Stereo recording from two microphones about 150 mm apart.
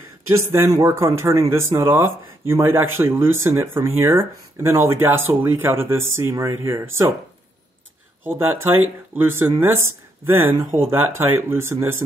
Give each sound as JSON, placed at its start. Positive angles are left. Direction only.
{"t": 0.3, "sound": "speech", "side_deg": -15}
{"t": 8.2, "sound": "speech", "side_deg": -15}